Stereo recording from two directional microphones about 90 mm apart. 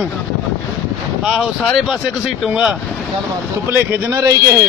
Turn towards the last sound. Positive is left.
turn(degrees=-35)  # may be behind; listen again after turning